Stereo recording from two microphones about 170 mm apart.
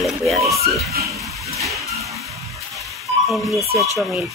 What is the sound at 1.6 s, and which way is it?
Vehicle, 20° right (ahead or behind).